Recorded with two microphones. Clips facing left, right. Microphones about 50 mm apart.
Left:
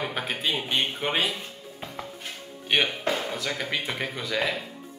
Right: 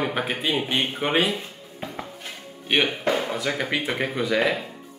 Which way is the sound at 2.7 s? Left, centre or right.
Centre.